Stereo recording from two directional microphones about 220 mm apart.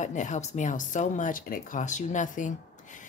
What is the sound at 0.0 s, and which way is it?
Speech, 35° left (ahead or behind).